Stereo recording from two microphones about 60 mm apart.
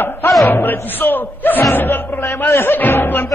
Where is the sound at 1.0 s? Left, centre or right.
Left.